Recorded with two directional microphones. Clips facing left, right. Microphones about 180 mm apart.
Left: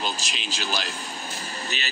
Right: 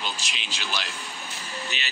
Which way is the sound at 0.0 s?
40° left (ahead or behind).